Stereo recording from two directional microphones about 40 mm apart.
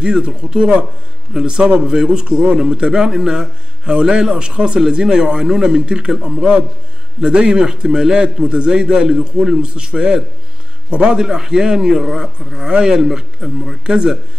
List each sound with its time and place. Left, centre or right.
0.0 s a man's voice: right
13.8 s a man's voice: right